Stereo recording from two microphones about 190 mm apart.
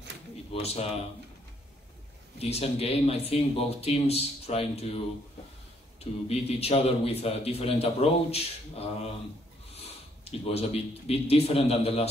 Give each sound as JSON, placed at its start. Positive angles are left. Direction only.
{"t": 0.5, "sound": "speech", "side_deg": 35}
{"t": 2.3, "sound": "a man's voice", "side_deg": 30}
{"t": 10.2, "sound": "a man's voice", "side_deg": 30}